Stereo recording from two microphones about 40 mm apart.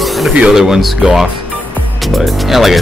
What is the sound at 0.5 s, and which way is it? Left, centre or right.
Speech, centre.